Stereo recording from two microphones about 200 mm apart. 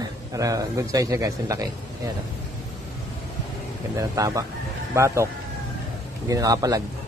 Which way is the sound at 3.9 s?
15° right (ahead or behind).